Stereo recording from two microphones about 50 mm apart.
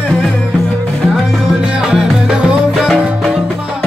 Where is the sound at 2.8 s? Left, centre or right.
Centre.